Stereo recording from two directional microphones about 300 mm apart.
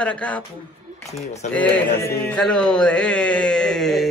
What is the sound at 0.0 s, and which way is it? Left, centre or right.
Speech, centre.